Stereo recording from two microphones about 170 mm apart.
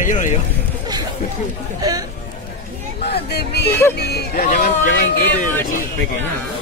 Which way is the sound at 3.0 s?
70° left (ahead or behind).